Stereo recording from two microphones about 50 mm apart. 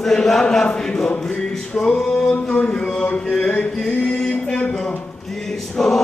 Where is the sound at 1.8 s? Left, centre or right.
Left.